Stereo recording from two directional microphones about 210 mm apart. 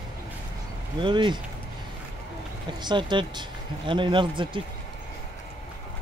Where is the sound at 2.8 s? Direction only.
20° right (ahead or behind).